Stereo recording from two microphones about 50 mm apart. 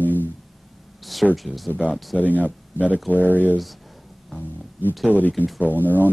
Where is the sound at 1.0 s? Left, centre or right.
Centre.